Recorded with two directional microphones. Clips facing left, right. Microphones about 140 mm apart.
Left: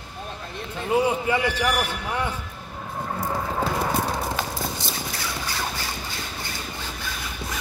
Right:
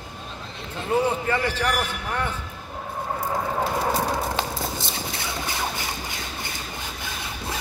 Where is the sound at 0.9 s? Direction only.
10° left (ahead or behind).